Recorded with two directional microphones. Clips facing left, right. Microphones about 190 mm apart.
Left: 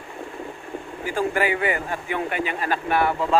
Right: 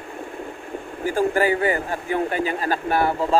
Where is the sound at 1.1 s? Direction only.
40° right (ahead or behind).